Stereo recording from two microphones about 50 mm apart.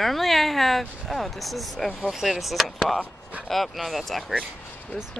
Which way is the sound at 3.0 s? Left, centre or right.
Right.